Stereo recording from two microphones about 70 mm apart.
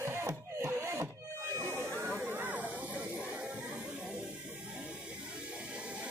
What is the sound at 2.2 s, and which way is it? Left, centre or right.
Music, right.